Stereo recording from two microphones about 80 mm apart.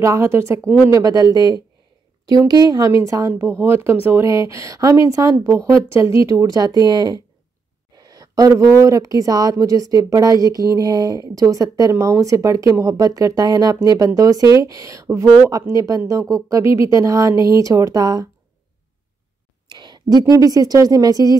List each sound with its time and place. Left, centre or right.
0.0 s speech: right
0.9 s a woman's voice: right
2.9 s speech: right
19.7 s speech: right